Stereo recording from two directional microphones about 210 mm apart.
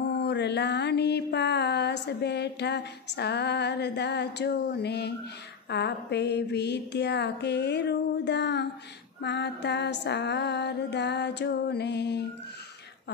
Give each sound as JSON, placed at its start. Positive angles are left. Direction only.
{"t": 0.1, "sound": "mantra", "side_deg": 55}